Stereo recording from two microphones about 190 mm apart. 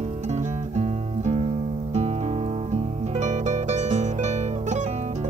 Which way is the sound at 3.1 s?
40° right (ahead or behind).